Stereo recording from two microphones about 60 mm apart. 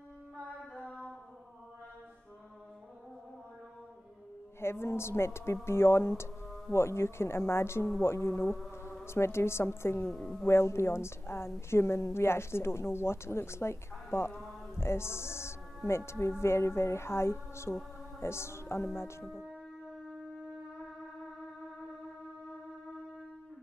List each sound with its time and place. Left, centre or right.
4.6 s a woman's voice: left
10.1 s speech: centre
10.4 s a woman's voice: left
19.2 s music: centre